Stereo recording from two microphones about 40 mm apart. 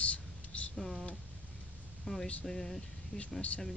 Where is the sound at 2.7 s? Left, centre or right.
Left.